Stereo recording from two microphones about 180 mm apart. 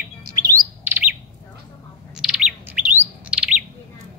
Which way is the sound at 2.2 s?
5° right (ahead or behind).